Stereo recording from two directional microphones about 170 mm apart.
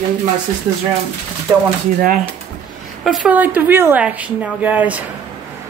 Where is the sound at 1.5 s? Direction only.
25° right (ahead or behind).